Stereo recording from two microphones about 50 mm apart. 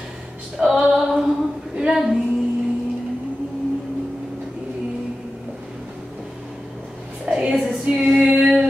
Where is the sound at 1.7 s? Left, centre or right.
Centre.